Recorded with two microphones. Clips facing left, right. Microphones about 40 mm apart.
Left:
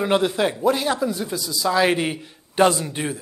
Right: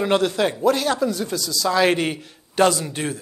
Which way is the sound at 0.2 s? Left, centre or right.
Centre.